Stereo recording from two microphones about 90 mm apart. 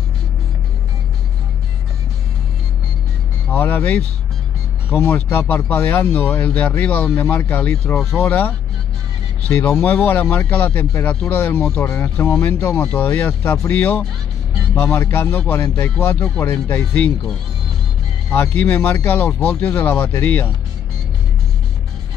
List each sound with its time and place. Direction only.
3.4 s speech: 20° left (ahead or behind)
13.4 s speech: 30° left (ahead or behind)
13.7 s speech: 20° left (ahead or behind)
18.3 s speech: 25° left (ahead or behind)